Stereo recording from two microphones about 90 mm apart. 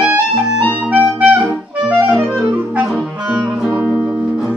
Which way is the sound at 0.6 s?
15° right (ahead or behind).